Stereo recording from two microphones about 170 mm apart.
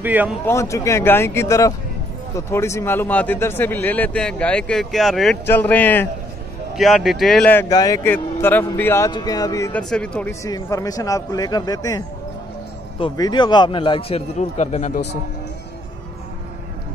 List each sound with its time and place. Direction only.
0.0 s a man's voice: 10° right (ahead or behind)
0.5 s a man's voice: 15° left (ahead or behind)
6.7 s speech: centre (ahead or behind)
7.7 s speech: 20° left (ahead or behind)
9.7 s speech: 5° left (ahead or behind)
10.4 s speech: 20° left (ahead or behind)
13.0 s a man's voice: 25° left (ahead or behind); by 14.9 s 45° left (ahead or behind)